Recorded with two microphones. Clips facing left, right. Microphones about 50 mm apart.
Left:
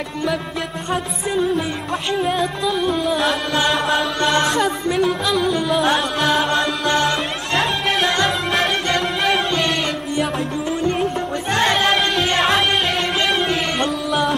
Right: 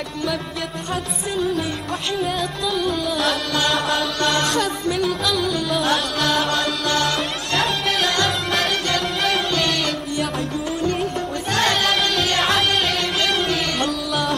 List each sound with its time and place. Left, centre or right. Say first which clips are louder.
1.3 s music: left 3 dB; left
7.5 s music: left 2 dB; centre
9.5 s music: left 1 dB; centre
11.5 s choir: left 3 dB; centre
13.2 s music: left 1 dB; centre